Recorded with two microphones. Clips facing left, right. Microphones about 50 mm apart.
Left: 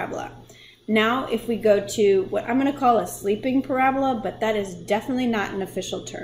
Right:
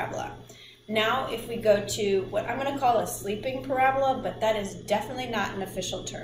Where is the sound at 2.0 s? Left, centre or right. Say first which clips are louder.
Left 7 dB; left.